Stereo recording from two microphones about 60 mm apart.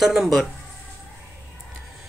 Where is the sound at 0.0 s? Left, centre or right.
Centre.